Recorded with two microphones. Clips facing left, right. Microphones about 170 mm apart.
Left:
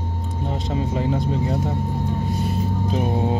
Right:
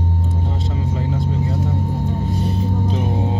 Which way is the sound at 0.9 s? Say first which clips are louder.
Even; 20° left (ahead or behind).